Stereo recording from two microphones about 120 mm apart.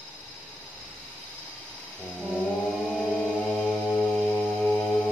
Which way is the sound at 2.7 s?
5° left (ahead or behind).